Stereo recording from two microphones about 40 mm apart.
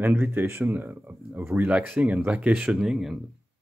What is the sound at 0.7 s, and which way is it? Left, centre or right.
Speech, right.